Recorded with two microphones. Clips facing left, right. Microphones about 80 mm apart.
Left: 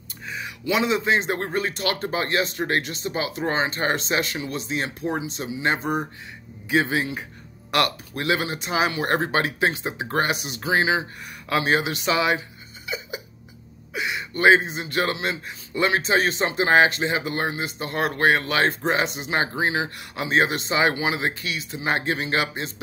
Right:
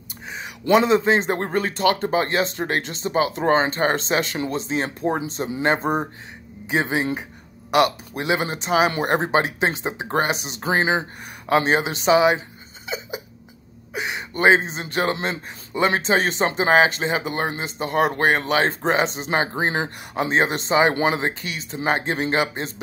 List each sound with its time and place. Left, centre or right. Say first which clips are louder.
0.7 s speech: right 5 dB; right
6.7 s speech: even; right
10.6 s speech: right 1 dB; right
11.4 s speech: right 3 dB; right
20.2 s speech: even; right
20.9 s speech: right 5 dB; right
21.2 s speech: right 1 dB; right